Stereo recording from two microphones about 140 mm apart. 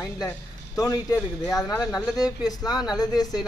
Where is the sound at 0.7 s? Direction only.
25° left (ahead or behind).